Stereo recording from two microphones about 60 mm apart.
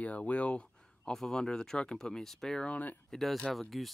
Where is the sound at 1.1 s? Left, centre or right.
Centre.